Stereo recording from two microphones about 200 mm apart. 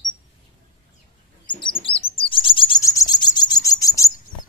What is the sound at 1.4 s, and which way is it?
Chirp, 25° left (ahead or behind).